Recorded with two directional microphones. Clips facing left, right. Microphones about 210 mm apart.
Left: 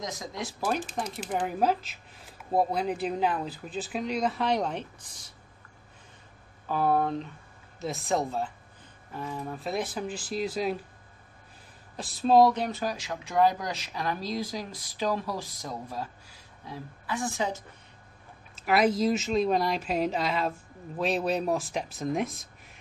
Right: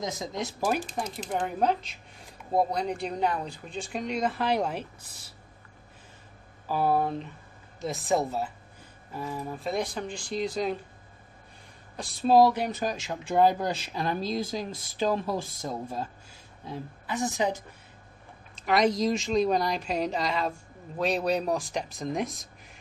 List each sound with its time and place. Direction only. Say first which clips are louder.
0.0 s speech: right 3 dB; 25° right (ahead or behind)
0.9 s speech: even; 5° right (ahead or behind)
1.3 s speech: even; 5° left (ahead or behind)
6.7 s speech: even; 5° right (ahead or behind)
12.0 s speech: even; centre (ahead or behind)
12.6 s speech: right 1 dB; 20° right (ahead or behind)
18.5 s speech: even; 5° left (ahead or behind)